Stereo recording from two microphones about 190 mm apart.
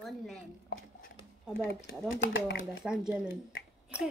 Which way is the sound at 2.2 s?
75° left (ahead or behind).